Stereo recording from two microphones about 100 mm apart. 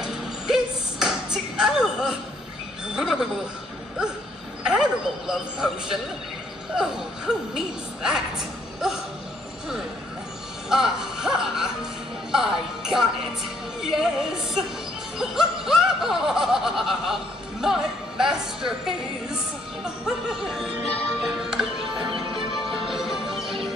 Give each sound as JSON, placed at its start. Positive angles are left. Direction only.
{"t": 0.0, "sound": "a sound", "side_deg": -5}
{"t": 2.9, "sound": "speech", "side_deg": -5}
{"t": 4.6, "sound": "music", "side_deg": -5}
{"t": 10.7, "sound": "speech", "side_deg": -5}
{"t": 13.7, "sound": "music", "side_deg": -5}
{"t": 22.1, "sound": "music", "side_deg": -60}
{"t": 22.6, "sound": "music", "side_deg": -5}